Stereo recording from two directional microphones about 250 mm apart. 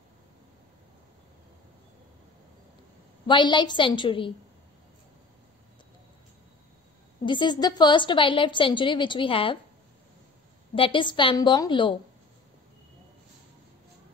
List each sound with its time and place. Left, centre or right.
3.3 s a woman's voice: centre
7.2 s a woman's voice: centre
10.7 s a woman's voice: centre